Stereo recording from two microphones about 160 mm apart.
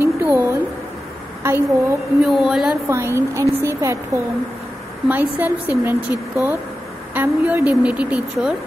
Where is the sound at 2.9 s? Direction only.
15° right (ahead or behind).